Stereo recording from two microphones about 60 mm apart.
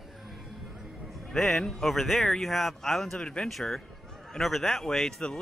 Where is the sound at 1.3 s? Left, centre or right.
Centre.